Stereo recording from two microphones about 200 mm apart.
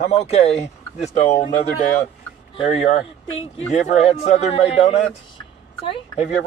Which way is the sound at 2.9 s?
30° left (ahead or behind).